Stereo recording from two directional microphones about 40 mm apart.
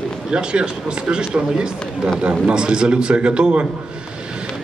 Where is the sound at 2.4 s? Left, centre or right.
Right.